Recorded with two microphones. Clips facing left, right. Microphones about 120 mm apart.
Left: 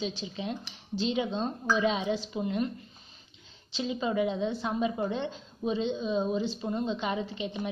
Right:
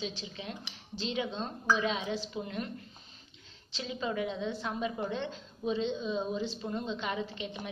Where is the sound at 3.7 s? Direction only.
15° left (ahead or behind).